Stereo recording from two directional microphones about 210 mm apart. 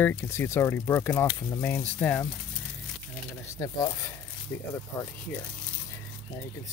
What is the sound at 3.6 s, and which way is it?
Speech, 20° left (ahead or behind).